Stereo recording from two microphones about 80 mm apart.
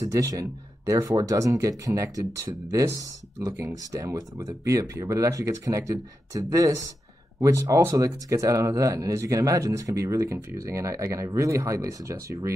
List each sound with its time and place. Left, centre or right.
0.0 s speech: right